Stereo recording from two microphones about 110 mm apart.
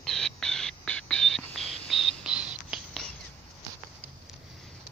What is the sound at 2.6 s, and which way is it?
Whispering, 5° right (ahead or behind).